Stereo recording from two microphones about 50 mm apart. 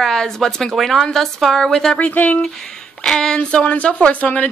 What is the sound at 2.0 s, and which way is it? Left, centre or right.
Speech, left.